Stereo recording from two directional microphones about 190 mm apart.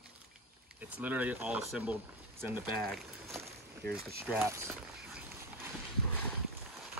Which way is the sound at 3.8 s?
55° right (ahead or behind).